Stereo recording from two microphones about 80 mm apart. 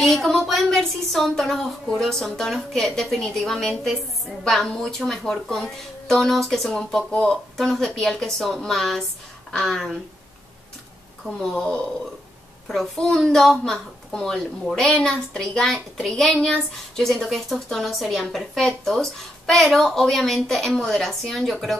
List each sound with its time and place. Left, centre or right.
0.0 s a woman's voice: centre
11.2 s a woman's voice: centre